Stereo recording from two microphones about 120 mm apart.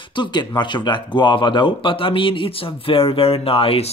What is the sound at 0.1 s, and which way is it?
Speech, 40° left (ahead or behind).